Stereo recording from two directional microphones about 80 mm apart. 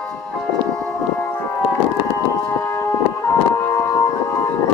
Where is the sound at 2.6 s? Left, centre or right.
Left.